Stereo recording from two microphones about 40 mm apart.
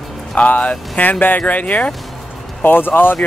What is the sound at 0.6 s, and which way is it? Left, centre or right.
Speech, left.